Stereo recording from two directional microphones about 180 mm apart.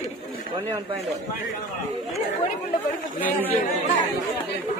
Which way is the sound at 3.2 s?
10° left (ahead or behind).